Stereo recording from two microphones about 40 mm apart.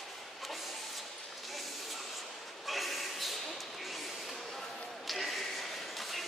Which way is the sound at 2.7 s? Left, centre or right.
Centre.